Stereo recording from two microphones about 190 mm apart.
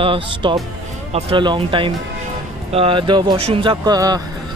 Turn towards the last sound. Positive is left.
turn(degrees=-20)  # may be behind; listen again after turning